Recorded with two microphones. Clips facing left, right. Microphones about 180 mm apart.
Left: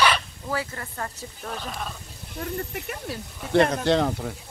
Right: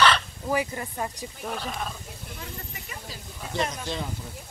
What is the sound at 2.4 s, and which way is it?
Speech, 60° left (ahead or behind).